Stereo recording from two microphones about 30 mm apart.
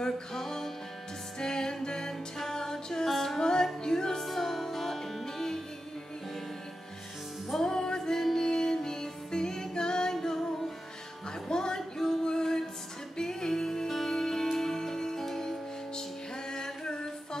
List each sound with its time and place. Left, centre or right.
0.4 s music: centre
4.2 s music: centre
7.6 s music: left
11.4 s a sound: left
13.2 s music: left
16.4 s music: left